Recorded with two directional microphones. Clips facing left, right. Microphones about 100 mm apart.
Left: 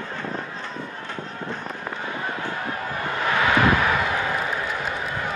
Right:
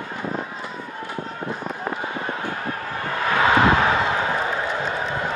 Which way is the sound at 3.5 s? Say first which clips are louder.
Right 3 dB; 25° right (ahead or behind).